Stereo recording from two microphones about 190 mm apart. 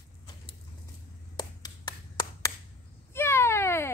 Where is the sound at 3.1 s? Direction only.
15° left (ahead or behind).